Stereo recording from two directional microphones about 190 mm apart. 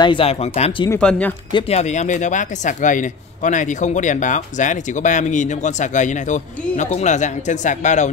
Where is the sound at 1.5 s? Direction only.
30° left (ahead or behind).